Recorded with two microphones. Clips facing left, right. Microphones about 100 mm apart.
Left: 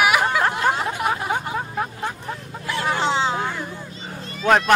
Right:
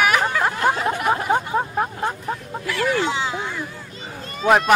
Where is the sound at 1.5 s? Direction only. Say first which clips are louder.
Right 4 dB; 30° right (ahead or behind).